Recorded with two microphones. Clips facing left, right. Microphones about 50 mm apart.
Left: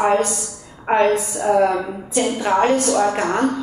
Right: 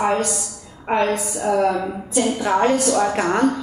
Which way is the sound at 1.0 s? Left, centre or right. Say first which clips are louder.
Left 3 dB; left.